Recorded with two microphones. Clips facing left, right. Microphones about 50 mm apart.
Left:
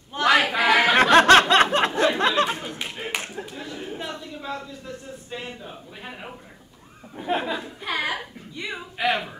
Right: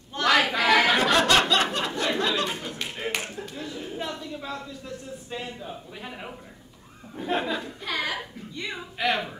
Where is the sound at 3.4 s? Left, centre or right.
Centre.